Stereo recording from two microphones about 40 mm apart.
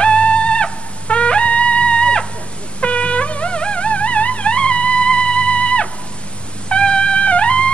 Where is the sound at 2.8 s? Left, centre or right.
Left.